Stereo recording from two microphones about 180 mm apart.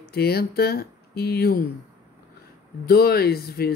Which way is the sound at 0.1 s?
60° left (ahead or behind).